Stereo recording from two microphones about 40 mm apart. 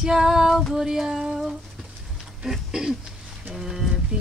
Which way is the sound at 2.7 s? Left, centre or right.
Centre.